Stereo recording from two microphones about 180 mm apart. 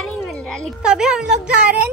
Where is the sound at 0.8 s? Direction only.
5° right (ahead or behind).